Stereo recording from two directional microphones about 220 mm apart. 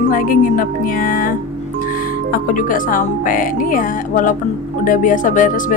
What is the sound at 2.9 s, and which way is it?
Speech, 40° left (ahead or behind).